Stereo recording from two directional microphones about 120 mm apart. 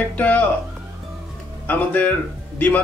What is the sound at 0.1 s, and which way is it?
Speech, 15° left (ahead or behind).